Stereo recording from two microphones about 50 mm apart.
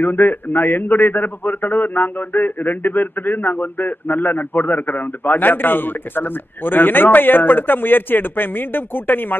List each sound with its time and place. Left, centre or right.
0.0 s a man's voice: left